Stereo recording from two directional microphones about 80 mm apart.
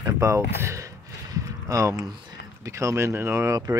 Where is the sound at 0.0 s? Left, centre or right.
Right.